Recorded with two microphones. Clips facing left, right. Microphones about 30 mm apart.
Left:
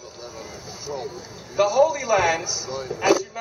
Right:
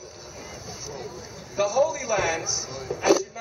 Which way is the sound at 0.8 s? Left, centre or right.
Left.